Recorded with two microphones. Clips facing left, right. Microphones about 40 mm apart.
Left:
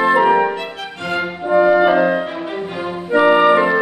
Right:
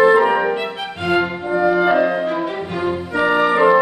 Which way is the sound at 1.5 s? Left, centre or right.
Left.